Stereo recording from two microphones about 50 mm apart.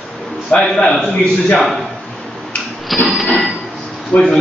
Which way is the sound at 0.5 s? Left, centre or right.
Left.